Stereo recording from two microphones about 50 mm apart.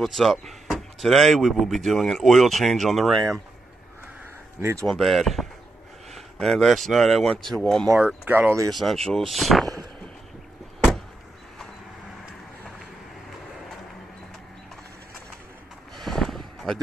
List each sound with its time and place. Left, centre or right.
0.0 s speech: centre
4.6 s speech: right
4.8 s speech: centre
8.3 s speech: right
8.6 s speech: centre
16.0 s a sound: centre